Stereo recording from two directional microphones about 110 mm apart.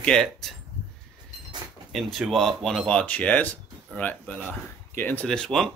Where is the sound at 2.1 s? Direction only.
Centre (ahead or behind).